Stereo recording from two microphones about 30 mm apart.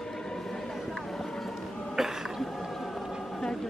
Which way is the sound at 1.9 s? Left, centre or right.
Centre.